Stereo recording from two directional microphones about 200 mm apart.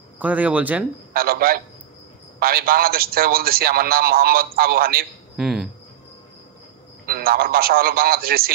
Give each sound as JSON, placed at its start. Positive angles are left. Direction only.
{"t": 0.2, "sound": "speech", "side_deg": -5}
{"t": 1.1, "sound": "a man's voice", "side_deg": -50}
{"t": 5.3, "sound": "speech", "side_deg": 0}
{"t": 7.1, "sound": "a man's voice", "side_deg": -50}